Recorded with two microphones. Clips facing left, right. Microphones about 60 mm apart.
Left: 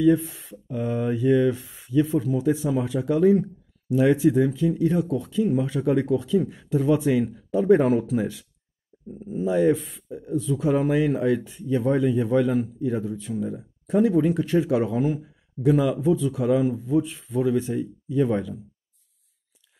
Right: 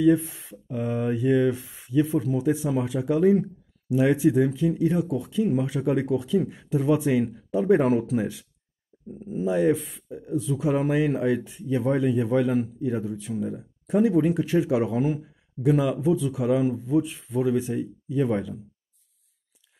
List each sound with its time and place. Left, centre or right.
0.5 s speech: centre